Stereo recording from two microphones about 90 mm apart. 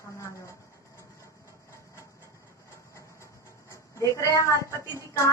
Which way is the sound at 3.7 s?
35° left (ahead or behind).